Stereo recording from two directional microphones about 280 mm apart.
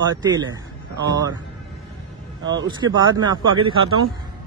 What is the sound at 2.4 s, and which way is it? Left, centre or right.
Speech, centre.